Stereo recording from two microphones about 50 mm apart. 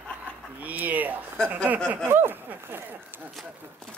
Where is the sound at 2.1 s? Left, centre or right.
Right.